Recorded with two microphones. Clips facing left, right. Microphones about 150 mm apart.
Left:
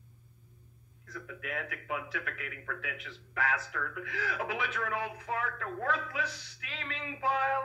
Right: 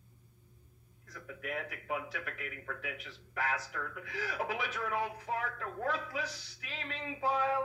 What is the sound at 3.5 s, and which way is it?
Speech, 40° right (ahead or behind).